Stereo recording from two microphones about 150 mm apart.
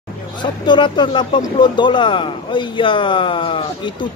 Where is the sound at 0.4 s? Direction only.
30° left (ahead or behind).